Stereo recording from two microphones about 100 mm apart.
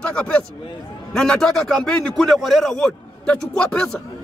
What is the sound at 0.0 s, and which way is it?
A man's voice, 10° left (ahead or behind).